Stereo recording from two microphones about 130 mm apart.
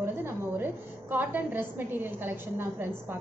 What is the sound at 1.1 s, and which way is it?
A woman's voice, 15° right (ahead or behind).